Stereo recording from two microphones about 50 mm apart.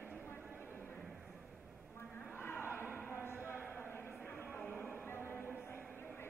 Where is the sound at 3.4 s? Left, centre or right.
Right.